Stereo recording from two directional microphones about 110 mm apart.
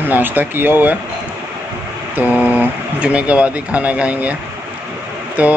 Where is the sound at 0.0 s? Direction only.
15° right (ahead or behind).